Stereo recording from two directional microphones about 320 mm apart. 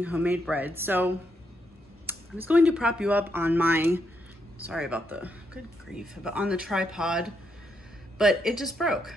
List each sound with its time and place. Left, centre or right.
0.0 s speech: centre